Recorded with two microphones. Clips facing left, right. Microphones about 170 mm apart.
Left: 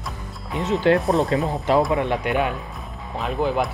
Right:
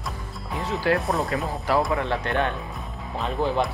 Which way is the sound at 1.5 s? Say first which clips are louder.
Left 4 dB; 20° left (ahead or behind).